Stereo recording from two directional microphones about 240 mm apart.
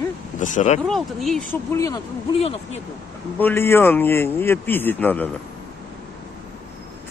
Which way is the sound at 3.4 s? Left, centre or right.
Centre.